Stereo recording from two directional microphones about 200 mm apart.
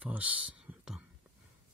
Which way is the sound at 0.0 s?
5° right (ahead or behind).